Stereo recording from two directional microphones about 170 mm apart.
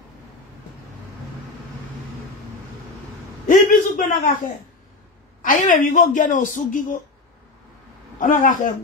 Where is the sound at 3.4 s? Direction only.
50° left (ahead or behind).